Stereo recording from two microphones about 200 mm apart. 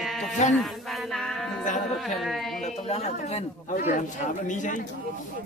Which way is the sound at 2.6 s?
35° left (ahead or behind).